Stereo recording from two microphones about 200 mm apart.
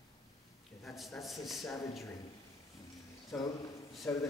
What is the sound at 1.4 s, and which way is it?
Speech, centre (ahead or behind).